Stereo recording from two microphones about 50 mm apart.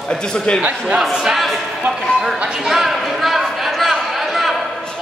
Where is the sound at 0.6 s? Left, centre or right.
Right.